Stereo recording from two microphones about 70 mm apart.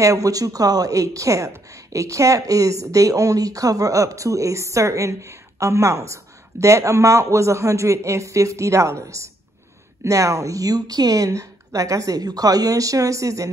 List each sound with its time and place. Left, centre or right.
0.0 s a woman's voice: right